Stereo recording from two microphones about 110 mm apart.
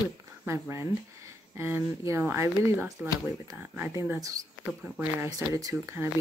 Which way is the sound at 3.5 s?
15° right (ahead or behind).